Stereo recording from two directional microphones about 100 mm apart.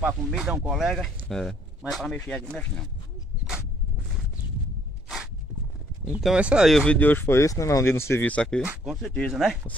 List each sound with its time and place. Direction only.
0.0 s speech: 5° right (ahead or behind)
6.2 s speech: 10° right (ahead or behind)
6.9 s speech: 15° left (ahead or behind)
8.2 s speech: 10° left (ahead or behind)